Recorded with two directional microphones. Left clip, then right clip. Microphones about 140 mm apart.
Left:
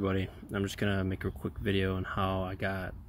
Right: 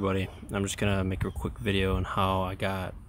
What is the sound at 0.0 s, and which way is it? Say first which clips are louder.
Speech: right 3 dB; 10° right (ahead or behind).